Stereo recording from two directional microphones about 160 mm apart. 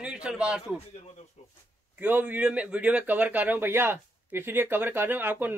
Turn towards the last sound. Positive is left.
turn(degrees=-15)  # may be behind; listen again after turning